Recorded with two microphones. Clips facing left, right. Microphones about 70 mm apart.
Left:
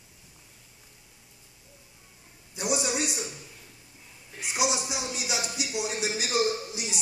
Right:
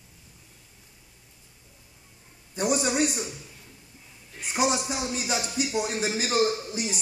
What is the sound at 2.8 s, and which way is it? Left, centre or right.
Speech, right.